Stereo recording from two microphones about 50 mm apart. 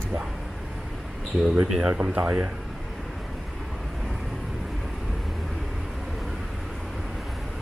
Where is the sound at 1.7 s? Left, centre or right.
Right.